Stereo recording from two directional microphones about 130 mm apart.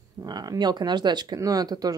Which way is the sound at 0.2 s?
30° right (ahead or behind).